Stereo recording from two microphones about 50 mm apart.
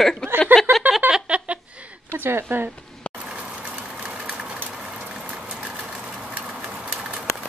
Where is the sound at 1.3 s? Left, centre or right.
Right.